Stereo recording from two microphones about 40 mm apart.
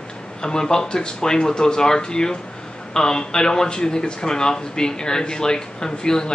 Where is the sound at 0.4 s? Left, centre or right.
Centre.